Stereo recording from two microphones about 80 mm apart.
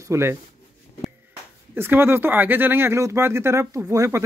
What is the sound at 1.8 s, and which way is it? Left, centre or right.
Speech, right.